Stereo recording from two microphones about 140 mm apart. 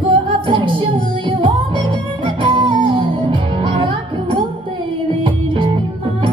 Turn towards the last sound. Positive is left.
turn(degrees=-35)  # may be behind; listen again after turning